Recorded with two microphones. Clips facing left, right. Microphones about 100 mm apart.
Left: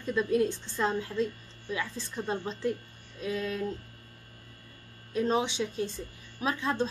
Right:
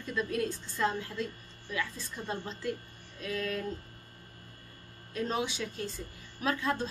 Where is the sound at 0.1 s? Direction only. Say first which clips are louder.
Left 6 dB; 25° left (ahead or behind).